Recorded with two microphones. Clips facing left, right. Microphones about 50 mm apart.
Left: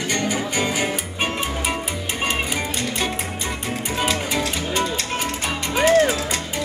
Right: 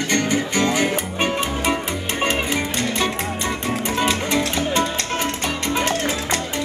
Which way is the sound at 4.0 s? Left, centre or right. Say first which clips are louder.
Right 1 dB; centre.